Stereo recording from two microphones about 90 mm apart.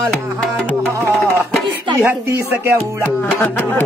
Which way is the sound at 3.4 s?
20° left (ahead or behind).